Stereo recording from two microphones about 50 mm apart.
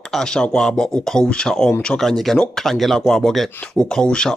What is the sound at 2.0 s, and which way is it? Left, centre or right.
Speech, centre.